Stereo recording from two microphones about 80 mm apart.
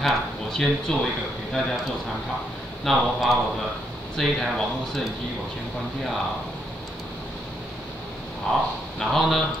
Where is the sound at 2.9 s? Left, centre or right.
Centre.